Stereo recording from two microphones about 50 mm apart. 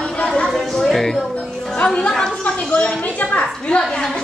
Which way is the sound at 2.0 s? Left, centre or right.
Centre.